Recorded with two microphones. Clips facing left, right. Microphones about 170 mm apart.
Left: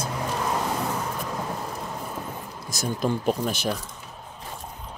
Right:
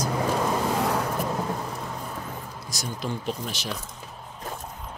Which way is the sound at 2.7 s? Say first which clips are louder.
Left 6 dB; 50° left (ahead or behind).